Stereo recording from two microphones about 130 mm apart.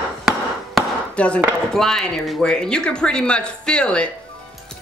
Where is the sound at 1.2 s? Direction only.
10° left (ahead or behind).